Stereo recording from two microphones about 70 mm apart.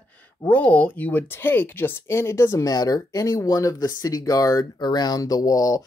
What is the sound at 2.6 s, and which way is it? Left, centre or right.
Speech, left.